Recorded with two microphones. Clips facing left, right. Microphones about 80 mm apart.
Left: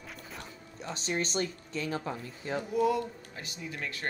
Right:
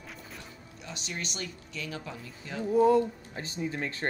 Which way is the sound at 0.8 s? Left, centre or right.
Left.